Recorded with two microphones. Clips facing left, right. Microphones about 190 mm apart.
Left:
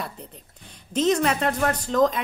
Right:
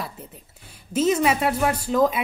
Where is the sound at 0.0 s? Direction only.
5° right (ahead or behind).